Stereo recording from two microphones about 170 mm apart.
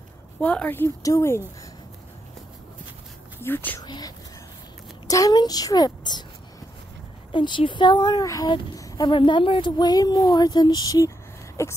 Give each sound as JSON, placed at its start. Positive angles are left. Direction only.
{"t": 0.4, "sound": "speech", "side_deg": 10}
{"t": 3.3, "sound": "speech", "side_deg": 15}
{"t": 3.8, "sound": "speech", "side_deg": 25}
{"t": 7.3, "sound": "speech", "side_deg": 30}